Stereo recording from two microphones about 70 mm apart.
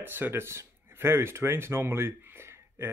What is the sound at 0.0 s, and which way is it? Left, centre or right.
Speech, right.